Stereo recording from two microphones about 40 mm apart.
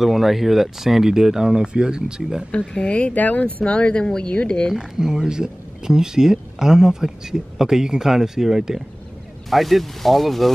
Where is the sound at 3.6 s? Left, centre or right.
Left.